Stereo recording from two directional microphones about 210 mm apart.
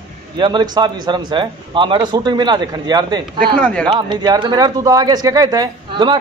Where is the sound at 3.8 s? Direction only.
20° right (ahead or behind).